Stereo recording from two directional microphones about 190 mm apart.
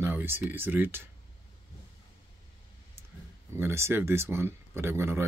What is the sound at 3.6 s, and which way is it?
Speech, 15° right (ahead or behind).